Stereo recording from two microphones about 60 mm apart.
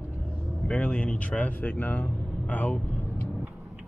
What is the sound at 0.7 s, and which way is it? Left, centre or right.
Speech, left.